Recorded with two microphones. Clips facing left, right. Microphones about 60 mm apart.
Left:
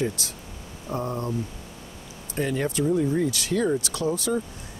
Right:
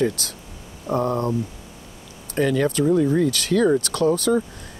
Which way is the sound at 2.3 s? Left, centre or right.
Right.